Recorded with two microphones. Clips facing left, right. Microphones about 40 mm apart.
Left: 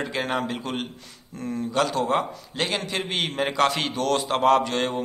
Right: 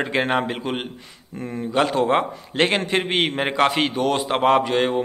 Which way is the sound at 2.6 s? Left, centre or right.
Right.